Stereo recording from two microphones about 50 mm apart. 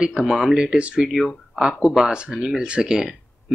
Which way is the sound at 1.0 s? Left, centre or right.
Centre.